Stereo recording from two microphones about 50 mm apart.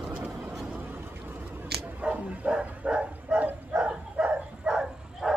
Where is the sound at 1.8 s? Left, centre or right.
Right.